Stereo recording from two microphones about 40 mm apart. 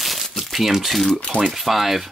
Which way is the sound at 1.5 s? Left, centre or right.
Centre.